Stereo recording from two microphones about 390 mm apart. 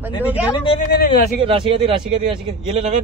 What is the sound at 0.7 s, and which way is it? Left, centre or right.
Speech, left.